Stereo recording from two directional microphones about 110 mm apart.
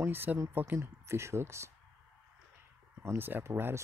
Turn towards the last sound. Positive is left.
turn(degrees=-20)  # may be behind; listen again after turning